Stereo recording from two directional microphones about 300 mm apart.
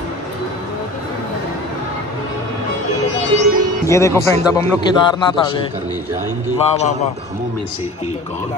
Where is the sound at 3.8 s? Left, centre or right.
Centre.